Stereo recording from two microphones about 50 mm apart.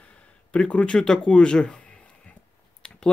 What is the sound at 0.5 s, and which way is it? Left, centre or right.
Speech, left.